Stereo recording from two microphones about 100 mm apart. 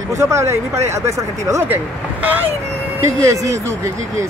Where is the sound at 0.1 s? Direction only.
30° right (ahead or behind).